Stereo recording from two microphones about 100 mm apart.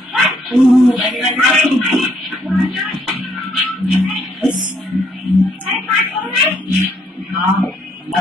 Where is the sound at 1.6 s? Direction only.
Centre (ahead or behind).